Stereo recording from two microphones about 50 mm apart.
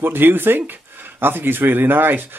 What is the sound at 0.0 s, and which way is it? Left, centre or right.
Speech, right.